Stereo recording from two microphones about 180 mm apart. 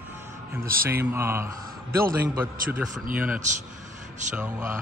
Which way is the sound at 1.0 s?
15° right (ahead or behind).